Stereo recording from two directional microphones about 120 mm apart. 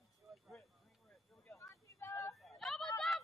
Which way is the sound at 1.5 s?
25° left (ahead or behind).